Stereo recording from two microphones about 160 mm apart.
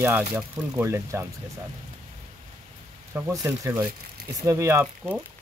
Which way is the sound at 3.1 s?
20° right (ahead or behind).